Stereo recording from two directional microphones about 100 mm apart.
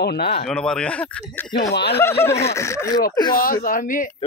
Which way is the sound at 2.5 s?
30° left (ahead or behind).